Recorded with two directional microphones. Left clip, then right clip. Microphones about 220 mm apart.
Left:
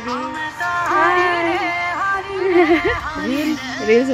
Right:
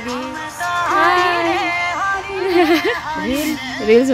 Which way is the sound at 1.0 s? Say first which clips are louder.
Right 2 dB; 20° right (ahead or behind).